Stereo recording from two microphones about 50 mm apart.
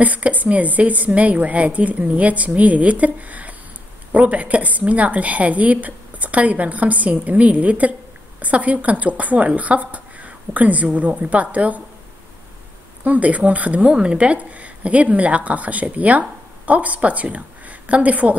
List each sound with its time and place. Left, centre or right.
0.0 s a woman's voice: right
13.0 s speech: right